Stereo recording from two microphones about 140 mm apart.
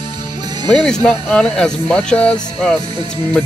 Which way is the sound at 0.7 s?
5° left (ahead or behind).